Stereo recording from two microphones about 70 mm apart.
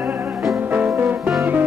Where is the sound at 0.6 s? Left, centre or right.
Right.